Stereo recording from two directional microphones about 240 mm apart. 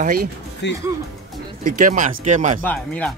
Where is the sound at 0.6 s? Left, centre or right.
Left.